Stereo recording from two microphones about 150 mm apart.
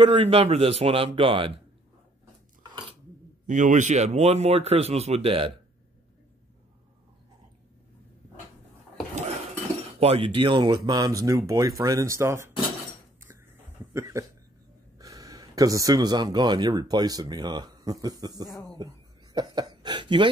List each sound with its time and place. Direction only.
0.0 s a man's voice: 35° right (ahead or behind)
2.6 s dishes: 35° right (ahead or behind)
3.4 s speech: 55° right (ahead or behind); by 5.5 s 40° right (ahead or behind)
9.9 s a man's voice: 40° right (ahead or behind); by 12.4 s 20° right (ahead or behind)
13.9 s speech: 20° right (ahead or behind)